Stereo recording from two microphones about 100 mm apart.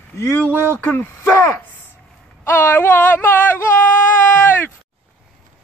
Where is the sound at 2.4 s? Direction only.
25° left (ahead or behind).